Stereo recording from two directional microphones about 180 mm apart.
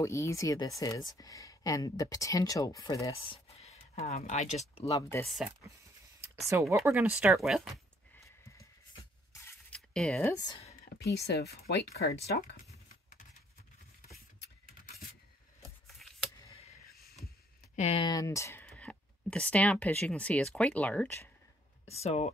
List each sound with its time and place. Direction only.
0.0 s speech: 15° left (ahead or behind)
3.4 s a sound: 35° left (ahead or behind)
4.8 s speech: 20° left (ahead or behind)
5.2 s speech: centre (ahead or behind)
6.5 s speech: 15° right (ahead or behind)
9.3 s a sound: 15° left (ahead or behind)
9.8 s a sound: centre (ahead or behind)
10.2 s speech: 20° left (ahead or behind)
11.0 s speech: 65° left (ahead or behind)
16.0 s a sound: centre (ahead or behind)
17.7 s speech: 35° left (ahead or behind)
18.0 s speech: 20° left (ahead or behind)
21.8 s speech: 35° left (ahead or behind)